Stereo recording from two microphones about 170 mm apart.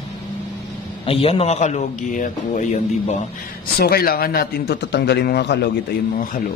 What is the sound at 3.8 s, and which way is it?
A man's voice, 65° left (ahead or behind).